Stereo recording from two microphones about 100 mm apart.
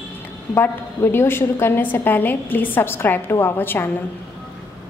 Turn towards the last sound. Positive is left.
turn(degrees=20)  # may be behind; listen again after turning